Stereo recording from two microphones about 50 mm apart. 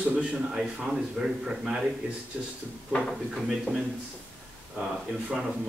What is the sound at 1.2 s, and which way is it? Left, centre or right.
Speech, centre.